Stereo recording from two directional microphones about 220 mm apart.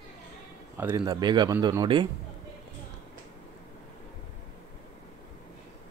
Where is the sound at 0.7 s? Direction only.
10° right (ahead or behind).